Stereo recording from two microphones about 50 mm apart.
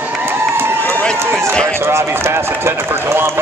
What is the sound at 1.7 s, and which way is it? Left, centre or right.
Run, right.